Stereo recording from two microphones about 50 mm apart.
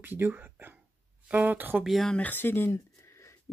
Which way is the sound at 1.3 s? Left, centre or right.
Right.